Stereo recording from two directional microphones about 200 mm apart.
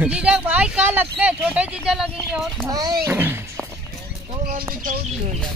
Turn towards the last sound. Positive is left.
turn(degrees=-45)  # may be behind; listen again after turning